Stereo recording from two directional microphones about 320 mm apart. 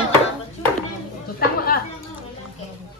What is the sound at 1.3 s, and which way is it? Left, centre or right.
Speech, left.